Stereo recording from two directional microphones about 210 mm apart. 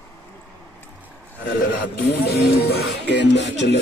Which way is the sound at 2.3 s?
50° left (ahead or behind).